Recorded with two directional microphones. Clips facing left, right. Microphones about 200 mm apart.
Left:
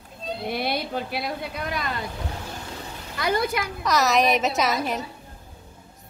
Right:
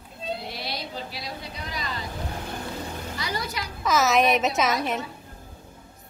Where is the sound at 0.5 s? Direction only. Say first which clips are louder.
Left 8 dB; 55° left (ahead or behind).